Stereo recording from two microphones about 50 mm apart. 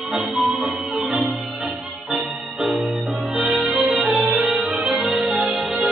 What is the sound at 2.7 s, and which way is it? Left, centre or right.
Music, centre.